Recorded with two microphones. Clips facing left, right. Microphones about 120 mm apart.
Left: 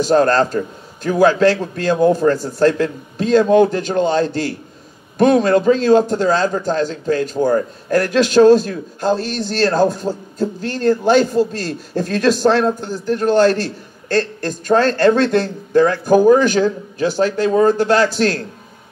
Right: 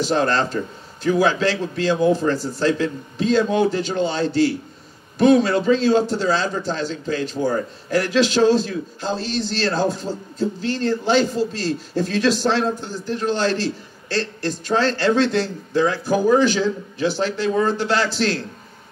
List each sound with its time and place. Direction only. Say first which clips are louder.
0.0 s a man's voice: left 6 dB; 45° left (ahead or behind)